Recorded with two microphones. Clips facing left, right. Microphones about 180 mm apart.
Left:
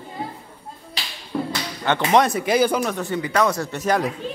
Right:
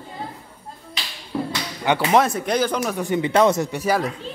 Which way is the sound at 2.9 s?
15° right (ahead or behind).